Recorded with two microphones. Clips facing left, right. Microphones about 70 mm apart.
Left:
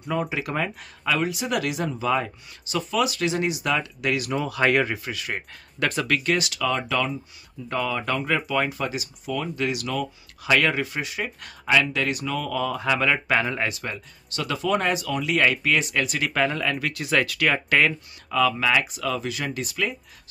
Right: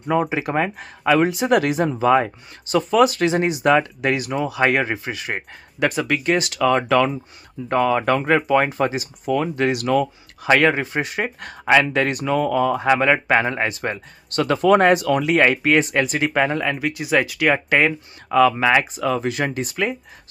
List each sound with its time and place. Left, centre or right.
0.0 s speech: right
4.3 s speech: centre
5.8 s speech: centre
6.3 s speech: right
15.3 s speech: right
18.3 s speech: right